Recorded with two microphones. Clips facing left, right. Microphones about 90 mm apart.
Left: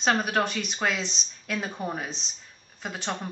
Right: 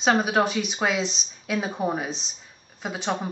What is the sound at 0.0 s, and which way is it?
Speech, 5° right (ahead or behind).